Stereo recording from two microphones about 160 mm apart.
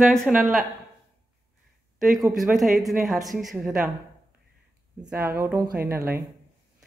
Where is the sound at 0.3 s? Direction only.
Centre (ahead or behind).